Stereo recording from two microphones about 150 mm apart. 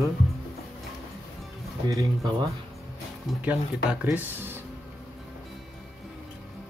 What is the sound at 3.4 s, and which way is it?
Speech, 10° right (ahead or behind).